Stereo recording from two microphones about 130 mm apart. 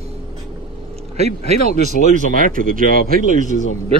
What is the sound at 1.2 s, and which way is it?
Speech, 55° right (ahead or behind).